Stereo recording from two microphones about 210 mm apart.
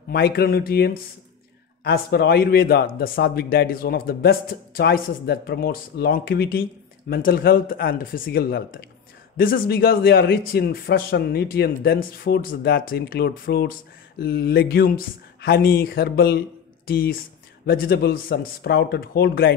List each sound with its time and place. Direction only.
0.1 s a man's voice: 50° left (ahead or behind)